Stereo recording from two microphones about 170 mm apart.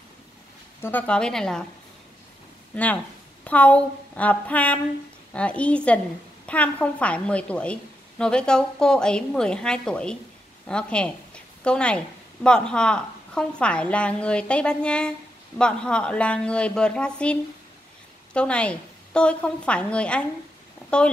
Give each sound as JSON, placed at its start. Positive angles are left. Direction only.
{"t": 0.7, "sound": "a woman's voice", "side_deg": 10}
{"t": 2.7, "sound": "a woman's voice", "side_deg": 10}